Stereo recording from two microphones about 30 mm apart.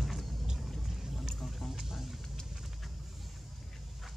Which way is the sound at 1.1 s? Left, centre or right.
Centre.